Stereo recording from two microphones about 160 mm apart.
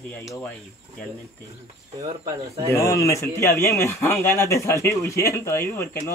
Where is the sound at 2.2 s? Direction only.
20° right (ahead or behind).